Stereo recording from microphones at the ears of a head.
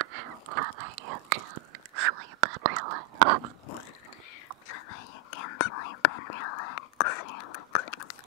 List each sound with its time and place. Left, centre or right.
0.0 s whispering: right
4.6 s whispering: left